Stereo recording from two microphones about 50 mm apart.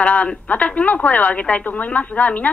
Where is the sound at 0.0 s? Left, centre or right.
Left.